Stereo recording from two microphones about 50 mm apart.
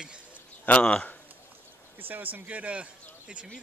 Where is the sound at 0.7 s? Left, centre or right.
Left.